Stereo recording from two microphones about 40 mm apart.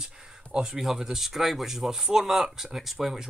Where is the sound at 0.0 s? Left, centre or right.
Centre.